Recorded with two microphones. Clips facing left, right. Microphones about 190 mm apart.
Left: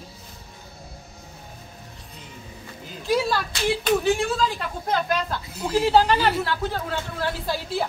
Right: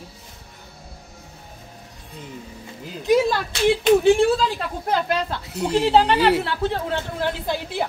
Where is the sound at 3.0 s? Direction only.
20° right (ahead or behind).